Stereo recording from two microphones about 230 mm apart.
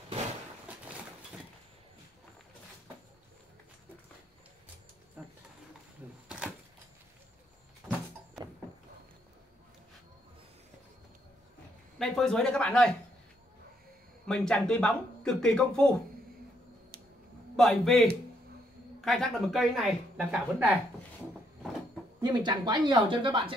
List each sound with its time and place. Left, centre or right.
5.2 s a sound: centre
7.8 s vehicle: centre
12.0 s speech: centre
14.2 s speech: centre
17.6 s speech: centre
22.2 s a woman's voice: centre